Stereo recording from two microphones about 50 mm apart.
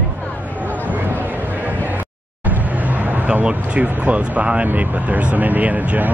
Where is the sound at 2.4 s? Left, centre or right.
Right.